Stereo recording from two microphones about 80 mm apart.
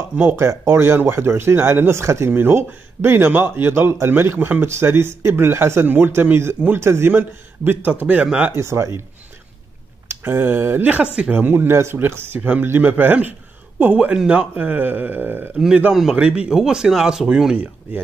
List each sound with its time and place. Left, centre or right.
0.2 s speech: right
8.5 s speech: right
10.0 s speech: right
11.3 s speech: right
15.9 s a man's voice: centre